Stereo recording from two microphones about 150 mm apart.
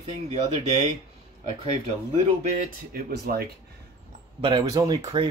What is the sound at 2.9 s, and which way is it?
Speech, 85° right.